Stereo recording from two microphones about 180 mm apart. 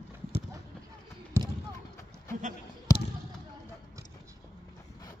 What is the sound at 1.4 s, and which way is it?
Basketball bounce, 15° right (ahead or behind).